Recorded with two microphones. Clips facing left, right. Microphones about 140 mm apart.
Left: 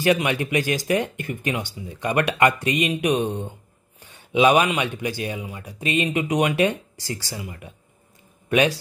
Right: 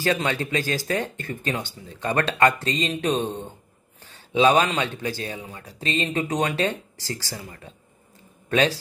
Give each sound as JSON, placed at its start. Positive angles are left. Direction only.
{"t": 0.0, "sound": "a man's voice", "side_deg": 15}